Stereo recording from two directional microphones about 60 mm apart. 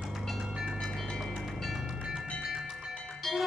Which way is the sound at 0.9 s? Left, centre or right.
Centre.